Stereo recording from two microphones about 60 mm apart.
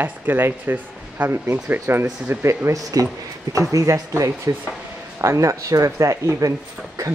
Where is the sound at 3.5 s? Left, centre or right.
Right.